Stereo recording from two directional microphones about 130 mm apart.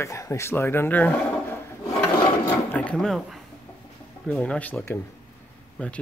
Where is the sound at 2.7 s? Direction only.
10° left (ahead or behind).